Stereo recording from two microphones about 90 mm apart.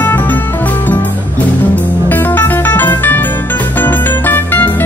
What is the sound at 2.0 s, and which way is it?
Music, 20° left (ahead or behind).